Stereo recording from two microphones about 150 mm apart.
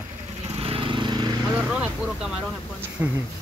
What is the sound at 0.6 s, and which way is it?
Lawn mower, 35° right (ahead or behind).